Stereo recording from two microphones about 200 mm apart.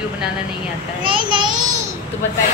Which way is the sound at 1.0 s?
25° right (ahead or behind).